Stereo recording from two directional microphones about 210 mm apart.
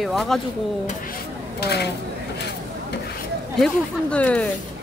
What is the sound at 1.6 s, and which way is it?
Speech, 50° left (ahead or behind).